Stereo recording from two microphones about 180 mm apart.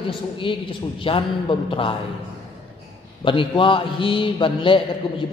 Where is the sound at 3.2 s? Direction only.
30° left (ahead or behind).